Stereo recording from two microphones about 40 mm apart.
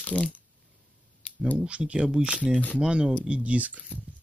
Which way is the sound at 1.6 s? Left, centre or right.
Right.